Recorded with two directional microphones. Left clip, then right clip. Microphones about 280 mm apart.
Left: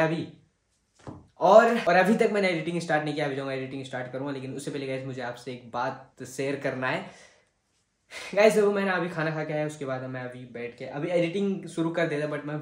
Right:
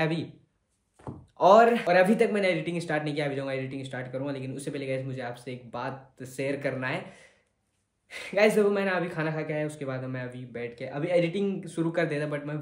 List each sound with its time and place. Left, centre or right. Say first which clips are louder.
1.0 s a sound: right 1 dB; centre
1.4 s speech: left 1 dB; centre
8.1 s speech: left 2 dB; centre